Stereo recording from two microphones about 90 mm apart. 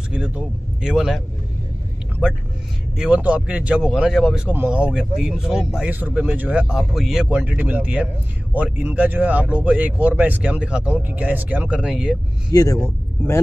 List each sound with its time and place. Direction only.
0.1 s speech: 10° right (ahead or behind)
4.5 s speech: 15° right (ahead or behind)
5.9 s speech: 20° right (ahead or behind)
6.7 s speech: 5° right (ahead or behind)
12.5 s speech: 40° left (ahead or behind)